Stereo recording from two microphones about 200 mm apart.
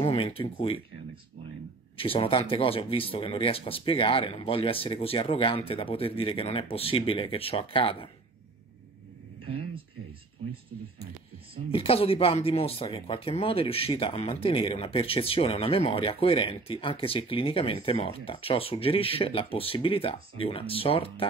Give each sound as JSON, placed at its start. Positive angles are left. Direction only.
{"t": 0.0, "sound": "speech", "side_deg": 30}
{"t": 2.0, "sound": "speech", "side_deg": 25}
{"t": 11.7, "sound": "speech", "side_deg": 30}